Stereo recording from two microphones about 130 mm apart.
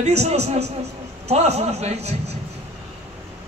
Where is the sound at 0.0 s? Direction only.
55° right (ahead or behind).